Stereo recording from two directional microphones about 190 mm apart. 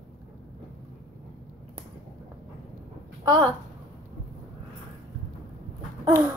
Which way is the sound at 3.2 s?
20° right (ahead or behind).